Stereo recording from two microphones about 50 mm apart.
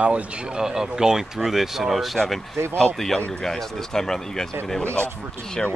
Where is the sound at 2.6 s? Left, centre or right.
Right.